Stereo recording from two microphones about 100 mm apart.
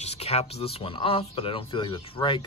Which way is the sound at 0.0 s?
90° left.